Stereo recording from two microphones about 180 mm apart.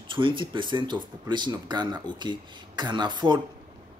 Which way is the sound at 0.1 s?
25° right (ahead or behind).